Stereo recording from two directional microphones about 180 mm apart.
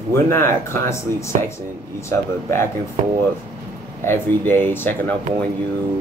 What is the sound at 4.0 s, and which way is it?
Speech, 10° left (ahead or behind).